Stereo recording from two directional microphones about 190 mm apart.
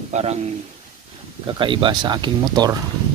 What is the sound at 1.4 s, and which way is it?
Speech, 25° right (ahead or behind).